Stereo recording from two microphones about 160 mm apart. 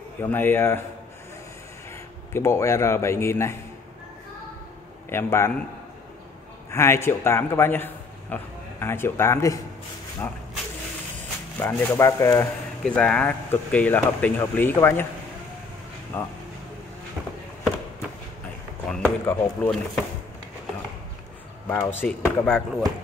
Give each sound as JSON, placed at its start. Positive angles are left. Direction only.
{"t": 0.2, "sound": "speech", "side_deg": 15}
{"t": 2.3, "sound": "speech", "side_deg": 15}
{"t": 5.1, "sound": "speech", "side_deg": 15}
{"t": 6.7, "sound": "a man's voice", "side_deg": 15}
{"t": 11.6, "sound": "speech", "side_deg": 15}
{"t": 12.8, "sound": "speech", "side_deg": 5}
{"t": 16.1, "sound": "speech", "side_deg": 10}
{"t": 18.9, "sound": "a sound", "side_deg": 10}
{"t": 21.6, "sound": "speech", "side_deg": 15}